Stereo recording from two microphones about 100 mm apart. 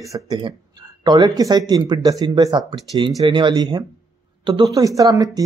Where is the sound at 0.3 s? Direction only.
50° right (ahead or behind).